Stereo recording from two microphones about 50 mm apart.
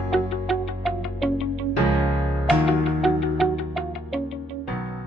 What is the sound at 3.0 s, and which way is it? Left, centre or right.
Music, centre.